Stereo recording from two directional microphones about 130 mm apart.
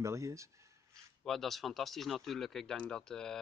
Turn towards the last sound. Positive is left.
turn(degrees=5)  # may be behind; listen again after turning